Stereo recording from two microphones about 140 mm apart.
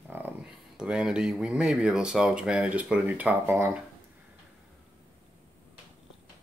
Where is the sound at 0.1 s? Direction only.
15° right (ahead or behind).